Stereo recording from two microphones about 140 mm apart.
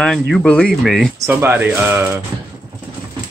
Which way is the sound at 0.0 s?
5° left (ahead or behind).